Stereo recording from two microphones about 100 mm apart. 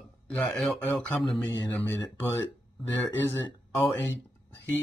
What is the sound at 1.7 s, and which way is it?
Speech, 20° left (ahead or behind).